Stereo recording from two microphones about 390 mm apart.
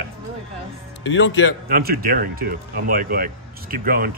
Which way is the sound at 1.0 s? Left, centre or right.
Left.